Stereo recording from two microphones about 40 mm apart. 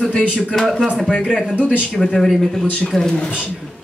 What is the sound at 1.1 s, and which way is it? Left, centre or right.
Speech, centre.